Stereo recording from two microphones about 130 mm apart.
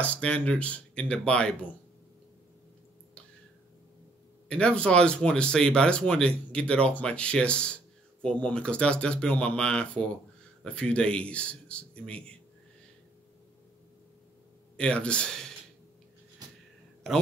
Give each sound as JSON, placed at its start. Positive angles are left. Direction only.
{"t": 0.0, "sound": "speech", "side_deg": 10}
{"t": 4.5, "sound": "speech", "side_deg": 10}
{"t": 14.8, "sound": "speech", "side_deg": 10}
{"t": 16.4, "sound": "a sound", "side_deg": -30}